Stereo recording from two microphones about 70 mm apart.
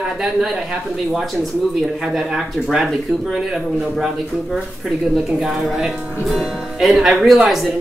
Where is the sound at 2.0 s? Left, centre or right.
Centre.